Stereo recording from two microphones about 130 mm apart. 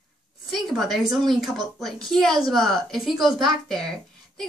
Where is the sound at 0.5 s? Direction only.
Centre (ahead or behind).